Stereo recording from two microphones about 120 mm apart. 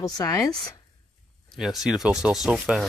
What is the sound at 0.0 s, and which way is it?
Speech, 30° left (ahead or behind).